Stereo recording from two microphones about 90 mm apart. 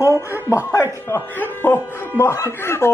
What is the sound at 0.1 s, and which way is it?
Speech, 30° right (ahead or behind).